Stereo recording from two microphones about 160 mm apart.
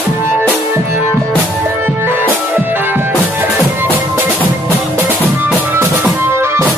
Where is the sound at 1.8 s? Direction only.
15° right (ahead or behind).